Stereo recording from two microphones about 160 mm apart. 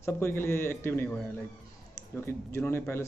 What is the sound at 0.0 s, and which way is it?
A man's voice, 15° left (ahead or behind).